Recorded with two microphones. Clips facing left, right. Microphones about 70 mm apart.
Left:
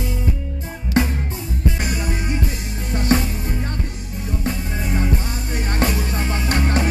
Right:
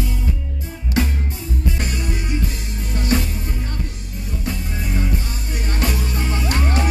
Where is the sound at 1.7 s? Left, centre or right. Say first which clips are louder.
Left 2 dB; centre.